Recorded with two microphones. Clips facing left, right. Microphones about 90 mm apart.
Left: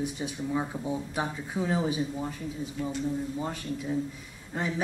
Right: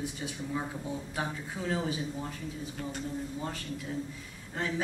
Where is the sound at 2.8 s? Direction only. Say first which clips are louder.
Left 6 dB; 50° right (ahead or behind).